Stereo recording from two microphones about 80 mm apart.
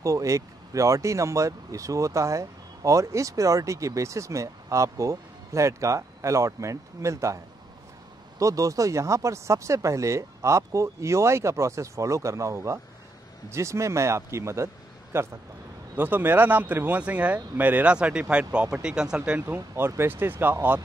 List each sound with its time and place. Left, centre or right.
0.0 s speech: right
8.4 s speech: right; by 19.4 s centre
19.4 s speech: right